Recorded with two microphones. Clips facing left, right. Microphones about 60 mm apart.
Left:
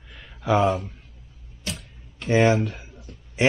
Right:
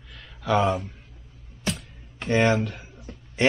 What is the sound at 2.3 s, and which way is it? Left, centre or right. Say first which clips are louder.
Speech: left 2 dB; centre.